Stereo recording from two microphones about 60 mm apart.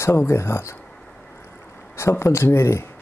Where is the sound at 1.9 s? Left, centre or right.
Left.